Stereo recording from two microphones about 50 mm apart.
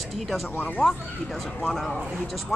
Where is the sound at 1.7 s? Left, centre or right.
Centre.